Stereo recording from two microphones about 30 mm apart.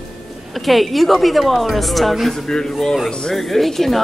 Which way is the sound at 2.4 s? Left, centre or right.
Left.